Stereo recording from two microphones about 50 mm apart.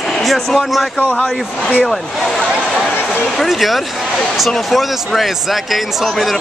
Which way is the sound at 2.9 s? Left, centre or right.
Left.